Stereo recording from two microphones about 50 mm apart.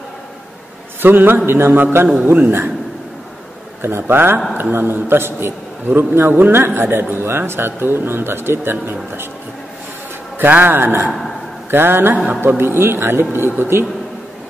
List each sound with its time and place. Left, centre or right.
1.0 s a man's voice: right
3.8 s a man's voice: right
10.5 s a man's voice: right
11.1 s a man's voice: centre
11.7 s a man's voice: right